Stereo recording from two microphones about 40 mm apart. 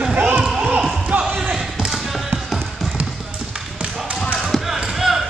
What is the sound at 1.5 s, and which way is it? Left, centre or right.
Basketball bounce, centre.